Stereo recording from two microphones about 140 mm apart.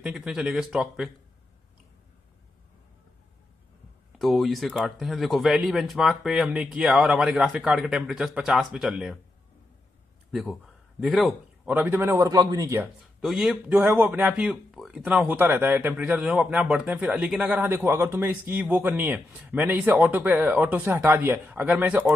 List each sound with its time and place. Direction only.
0.0 s speech: 5° right (ahead or behind)
4.2 s speech: centre (ahead or behind)
11.0 s speech: centre (ahead or behind)
11.7 s a man's voice: 15° right (ahead or behind)
13.2 s a man's voice: centre (ahead or behind)
17.6 s a man's voice: 15° right (ahead or behind)